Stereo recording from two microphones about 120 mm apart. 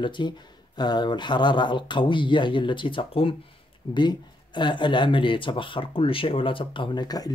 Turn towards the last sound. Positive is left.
turn(degrees=35)  # may be behind; listen again after turning